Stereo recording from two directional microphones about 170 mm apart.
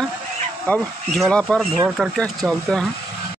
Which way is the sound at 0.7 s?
5° left (ahead or behind).